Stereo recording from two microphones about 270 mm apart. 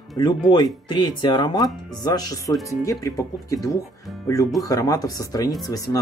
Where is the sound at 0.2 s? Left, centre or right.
Centre.